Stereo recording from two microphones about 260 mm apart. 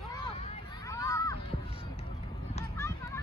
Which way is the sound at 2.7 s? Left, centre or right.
Centre.